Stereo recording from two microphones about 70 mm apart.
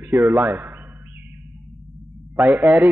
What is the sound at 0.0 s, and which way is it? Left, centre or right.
Speech, right.